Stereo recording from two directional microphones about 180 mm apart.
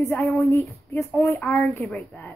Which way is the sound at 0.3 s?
10° left (ahead or behind).